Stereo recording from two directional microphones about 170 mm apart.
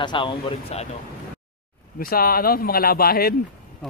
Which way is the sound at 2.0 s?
60° left (ahead or behind).